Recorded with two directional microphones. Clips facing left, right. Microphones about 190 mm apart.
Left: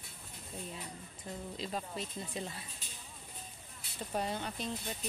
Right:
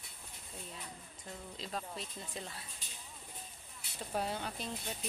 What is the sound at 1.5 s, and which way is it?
Music, 5° left (ahead or behind).